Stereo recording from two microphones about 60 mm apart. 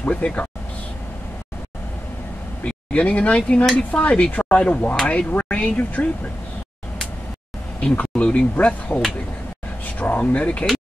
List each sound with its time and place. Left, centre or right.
0.0 s speech: left
2.6 s speech: left
7.8 s speech: centre